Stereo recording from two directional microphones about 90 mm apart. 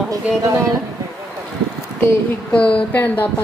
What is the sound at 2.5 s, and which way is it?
Speech, 15° left (ahead or behind).